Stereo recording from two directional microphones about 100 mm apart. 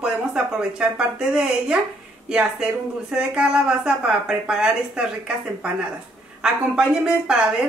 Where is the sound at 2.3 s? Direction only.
10° right (ahead or behind).